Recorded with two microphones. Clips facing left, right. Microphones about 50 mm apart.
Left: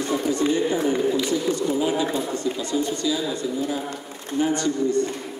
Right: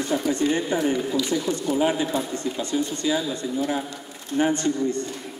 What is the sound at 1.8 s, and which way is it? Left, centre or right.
Speech, right.